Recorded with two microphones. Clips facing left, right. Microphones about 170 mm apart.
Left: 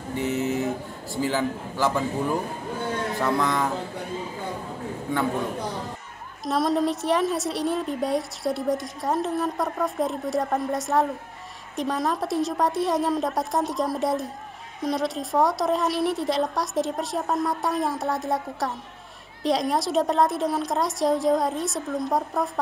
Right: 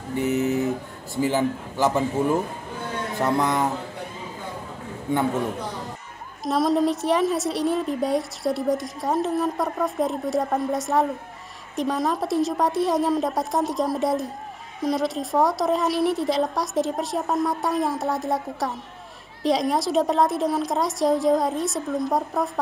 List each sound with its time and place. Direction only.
0.2 s music: 20° right (ahead or behind)
1.1 s a man's voice: 20° right (ahead or behind)
6.4 s a woman's voice: centre (ahead or behind)